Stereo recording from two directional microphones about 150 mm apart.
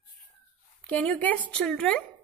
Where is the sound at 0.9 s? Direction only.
10° left (ahead or behind).